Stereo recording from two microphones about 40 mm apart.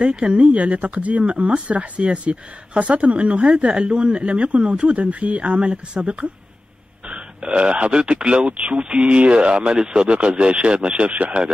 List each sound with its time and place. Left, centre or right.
0.0 s speech: right
7.1 s burping: right
7.9 s speech: right
11.1 s speech: right